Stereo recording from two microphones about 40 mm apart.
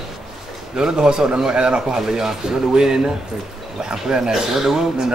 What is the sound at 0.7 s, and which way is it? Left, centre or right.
A man's voice, centre.